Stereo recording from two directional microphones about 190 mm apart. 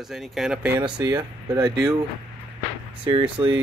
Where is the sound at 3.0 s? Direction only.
25° right (ahead or behind).